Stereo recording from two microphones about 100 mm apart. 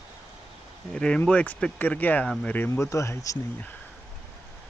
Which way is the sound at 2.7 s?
30° left (ahead or behind).